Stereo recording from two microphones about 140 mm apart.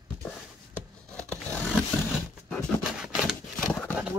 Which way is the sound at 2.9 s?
5° right (ahead or behind).